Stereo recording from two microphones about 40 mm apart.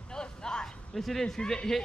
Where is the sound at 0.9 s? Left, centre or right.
Centre.